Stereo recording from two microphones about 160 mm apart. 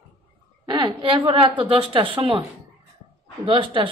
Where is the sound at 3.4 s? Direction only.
30° right (ahead or behind).